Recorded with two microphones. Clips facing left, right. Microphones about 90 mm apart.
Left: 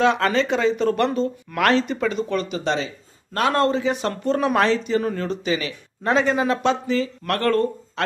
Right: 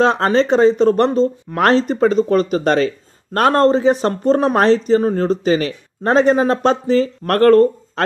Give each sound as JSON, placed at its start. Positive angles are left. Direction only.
{"t": 0.0, "sound": "a man's voice", "side_deg": -35}